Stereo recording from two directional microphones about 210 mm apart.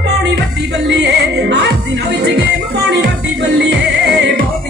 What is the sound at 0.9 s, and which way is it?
Music, 55° right (ahead or behind).